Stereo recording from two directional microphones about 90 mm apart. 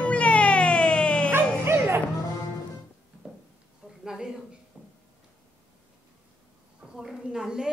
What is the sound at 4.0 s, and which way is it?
Speech, 5° right (ahead or behind).